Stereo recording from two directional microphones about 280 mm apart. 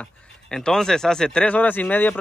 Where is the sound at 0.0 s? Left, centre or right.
Centre.